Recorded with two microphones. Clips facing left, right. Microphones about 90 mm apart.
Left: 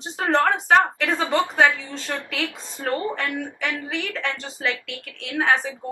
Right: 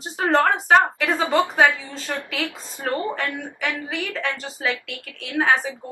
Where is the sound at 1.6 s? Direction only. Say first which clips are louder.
Right 1 dB; 20° right (ahead or behind).